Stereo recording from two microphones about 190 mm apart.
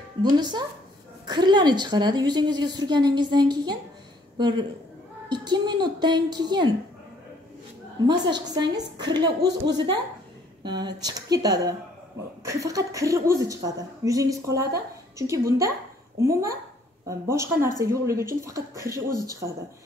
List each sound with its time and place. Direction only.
0.2 s a woman's voice: 25° right (ahead or behind)
8.1 s a woman's voice: 25° right (ahead or behind)